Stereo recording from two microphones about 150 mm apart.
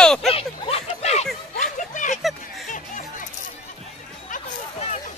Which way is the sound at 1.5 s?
60° left (ahead or behind).